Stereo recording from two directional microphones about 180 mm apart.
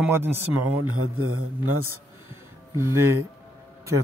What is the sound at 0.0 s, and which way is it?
Speech, 10° right (ahead or behind).